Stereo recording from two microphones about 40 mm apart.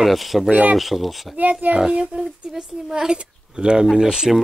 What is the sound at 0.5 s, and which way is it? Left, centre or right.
Speech, right.